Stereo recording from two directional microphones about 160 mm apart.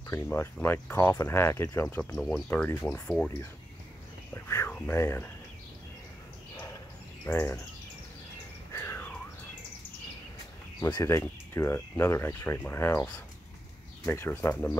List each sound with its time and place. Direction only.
0.0 s speech: 15° left (ahead or behind)
4.3 s speech: 15° left (ahead or behind)
6.5 s a sound: 20° left (ahead or behind)
7.2 s speech: 15° left (ahead or behind)
8.7 s a sound: 15° left (ahead or behind)
10.8 s speech: 20° left (ahead or behind)